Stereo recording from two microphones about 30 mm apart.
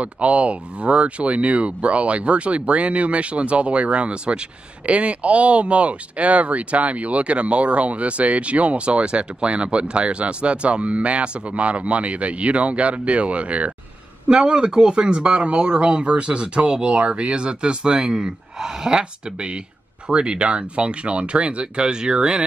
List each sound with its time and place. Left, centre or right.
0.0 s speech: right
14.3 s speech: right
18.9 s speech: right